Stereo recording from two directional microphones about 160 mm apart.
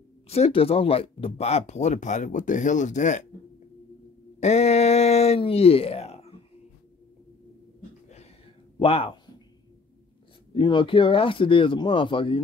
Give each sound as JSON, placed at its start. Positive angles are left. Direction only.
{"t": 0.3, "sound": "speech", "side_deg": 40}
{"t": 4.4, "sound": "speech", "side_deg": 45}
{"t": 8.8, "sound": "a man's voice", "side_deg": 35}
{"t": 10.5, "sound": "speech", "side_deg": 30}